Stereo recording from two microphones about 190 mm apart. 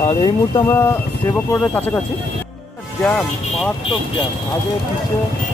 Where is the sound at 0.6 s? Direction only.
10° left (ahead or behind).